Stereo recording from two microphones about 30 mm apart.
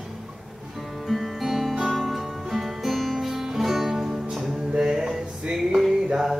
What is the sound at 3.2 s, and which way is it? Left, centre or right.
Music, centre.